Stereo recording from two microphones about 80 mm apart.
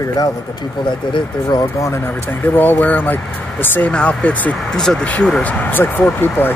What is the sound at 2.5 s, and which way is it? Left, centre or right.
Speech, left.